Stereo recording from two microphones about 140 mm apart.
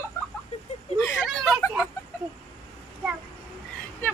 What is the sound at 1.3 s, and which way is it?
Speech, centre (ahead or behind).